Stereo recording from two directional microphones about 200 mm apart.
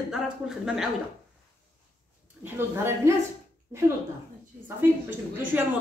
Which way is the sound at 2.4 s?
10° right (ahead or behind).